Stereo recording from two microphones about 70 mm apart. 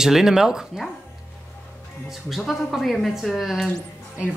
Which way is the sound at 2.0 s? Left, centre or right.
Centre.